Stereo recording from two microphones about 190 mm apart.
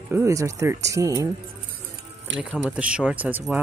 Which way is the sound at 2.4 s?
5° right (ahead or behind).